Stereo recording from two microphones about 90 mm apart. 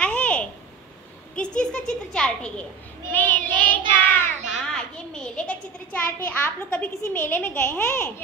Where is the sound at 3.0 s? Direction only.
20° left (ahead or behind).